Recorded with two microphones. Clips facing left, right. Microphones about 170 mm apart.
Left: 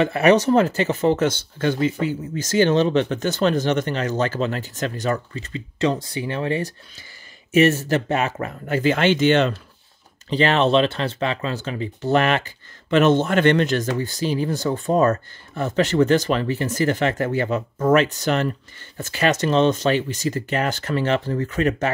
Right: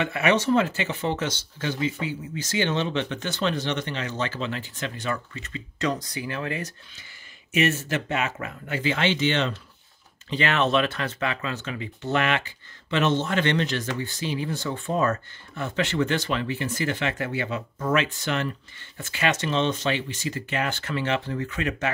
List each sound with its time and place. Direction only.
0.0 s speech: 35° left (ahead or behind)
10.3 s speech: 30° left (ahead or behind)